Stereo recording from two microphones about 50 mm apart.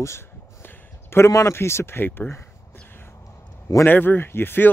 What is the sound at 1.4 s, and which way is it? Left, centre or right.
Speech, left.